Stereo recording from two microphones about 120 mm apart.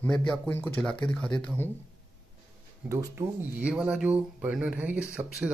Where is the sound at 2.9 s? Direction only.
20° right (ahead or behind).